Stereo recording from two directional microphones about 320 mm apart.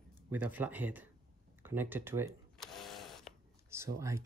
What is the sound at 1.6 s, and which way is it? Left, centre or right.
Cash register, centre.